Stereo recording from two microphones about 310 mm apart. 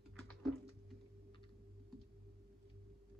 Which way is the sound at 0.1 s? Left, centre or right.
Centre.